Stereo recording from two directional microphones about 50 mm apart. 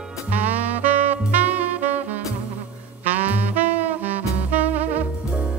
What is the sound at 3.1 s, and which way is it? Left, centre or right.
Saxophone, right.